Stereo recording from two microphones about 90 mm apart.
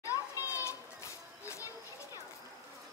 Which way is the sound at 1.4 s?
35° left (ahead or behind).